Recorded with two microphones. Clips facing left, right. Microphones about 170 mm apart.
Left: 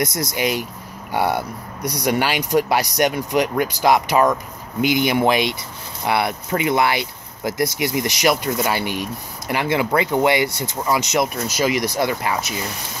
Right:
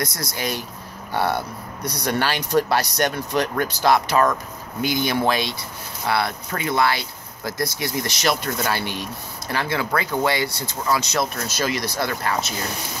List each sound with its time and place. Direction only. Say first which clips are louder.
0.0 s speech: left 5 dB; 20° left (ahead or behind)